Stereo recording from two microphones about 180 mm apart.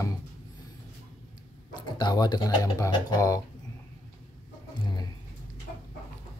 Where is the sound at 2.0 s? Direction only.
25° left (ahead or behind).